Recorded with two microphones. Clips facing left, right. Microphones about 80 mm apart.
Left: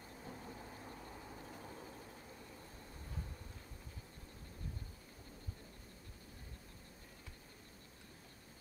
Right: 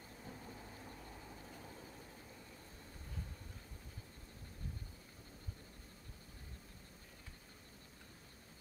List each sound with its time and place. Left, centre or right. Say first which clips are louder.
0.2 s thunder: left 2 dB; centre
1.5 s vehicle: left 2 dB; centre